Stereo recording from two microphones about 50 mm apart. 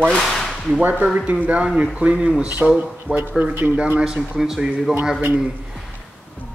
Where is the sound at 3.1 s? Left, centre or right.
Right.